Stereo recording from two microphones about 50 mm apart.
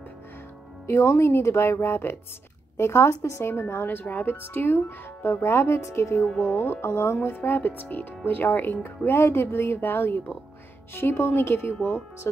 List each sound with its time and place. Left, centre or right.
0.8 s speech: left
2.8 s speech: left
7.2 s speech: left